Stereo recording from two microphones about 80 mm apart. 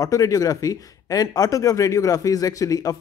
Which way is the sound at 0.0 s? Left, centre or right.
Left.